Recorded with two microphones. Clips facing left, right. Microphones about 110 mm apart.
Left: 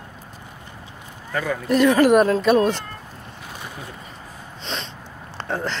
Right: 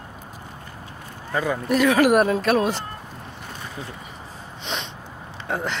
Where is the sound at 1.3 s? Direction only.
15° right (ahead or behind).